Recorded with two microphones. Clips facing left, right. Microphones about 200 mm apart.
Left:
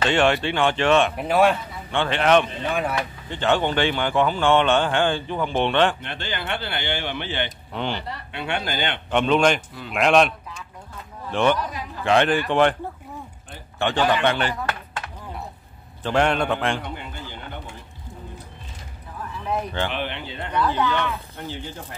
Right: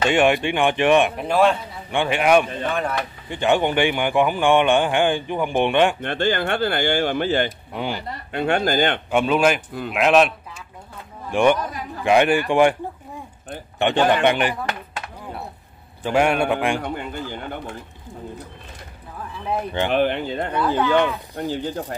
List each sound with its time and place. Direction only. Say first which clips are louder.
0.0 s a man's voice: right 2 dB; 15° right (ahead or behind)
1.1 s a man's voice: right 1 dB; 5° left (ahead or behind)
1.9 s a man's voice: right 1 dB; 10° right (ahead or behind)
2.7 s speech: left 1 dB; 10° left (ahead or behind)
3.3 s a man's voice: right 3 dB; 15° right (ahead or behind)
5.9 s speech: right 10 dB; 50° right (ahead or behind)
7.7 s a man's voice: right 1 dB; 10° right (ahead or behind)
8.1 s speech: right 7 dB; 45° right (ahead or behind)
9.1 s a man's voice: left 1 dB; 5° right (ahead or behind)
13.7 s a man's voice: right 3 dB; 20° right (ahead or behind)
16.0 s a man's voice: right 2 dB; 10° right (ahead or behind)
16.8 s a sound: right 6 dB; 50° right (ahead or behind)
19.9 s speech: right 10 dB; 45° right (ahead or behind)